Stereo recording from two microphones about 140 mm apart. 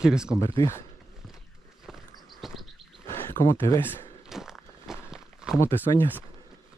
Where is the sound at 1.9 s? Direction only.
Centre (ahead or behind).